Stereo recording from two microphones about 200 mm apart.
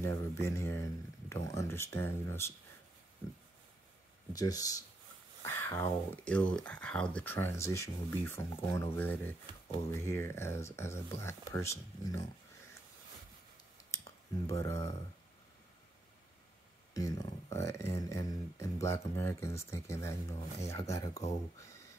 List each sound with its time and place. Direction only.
0.0 s speech: 15° left (ahead or behind)
4.3 s speech: 20° left (ahead or behind)
14.5 s speech: 15° left (ahead or behind)
16.9 s speech: 15° left (ahead or behind)